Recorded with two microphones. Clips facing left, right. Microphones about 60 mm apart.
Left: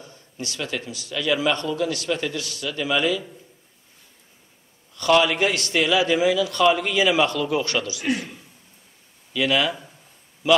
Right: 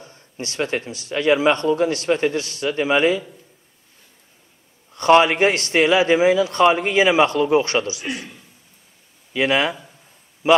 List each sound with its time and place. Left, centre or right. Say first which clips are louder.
0.0 s a man's voice: right 2 dB; right
4.9 s a man's voice: right 5 dB; right
9.3 s a man's voice: right 3 dB; right